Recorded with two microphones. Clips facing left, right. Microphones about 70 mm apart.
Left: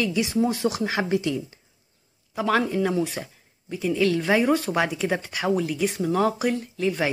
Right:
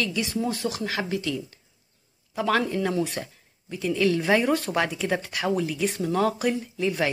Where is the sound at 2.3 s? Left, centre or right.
Centre.